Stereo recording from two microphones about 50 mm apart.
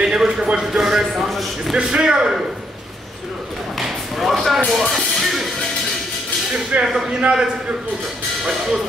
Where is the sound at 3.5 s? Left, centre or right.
Centre.